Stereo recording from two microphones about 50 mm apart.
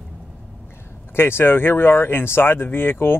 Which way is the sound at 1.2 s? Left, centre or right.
Left.